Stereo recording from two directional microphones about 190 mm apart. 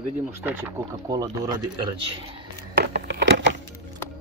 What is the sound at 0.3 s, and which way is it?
Speech, 10° right (ahead or behind).